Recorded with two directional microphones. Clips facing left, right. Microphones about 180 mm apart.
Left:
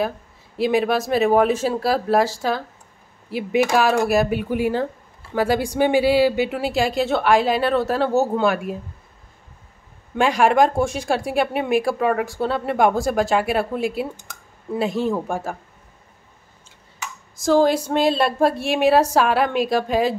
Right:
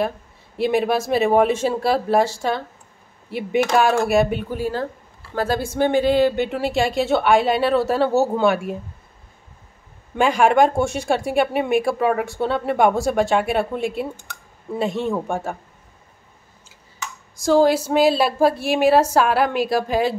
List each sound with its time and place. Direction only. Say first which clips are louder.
0.6 s speech: even; centre (ahead or behind)
4.5 s speech: left 3 dB; 15° left (ahead or behind); by 8.7 s centre (ahead or behind)
10.1 s speech: right 1 dB; centre (ahead or behind)
17.4 s speech: right 1 dB; centre (ahead or behind)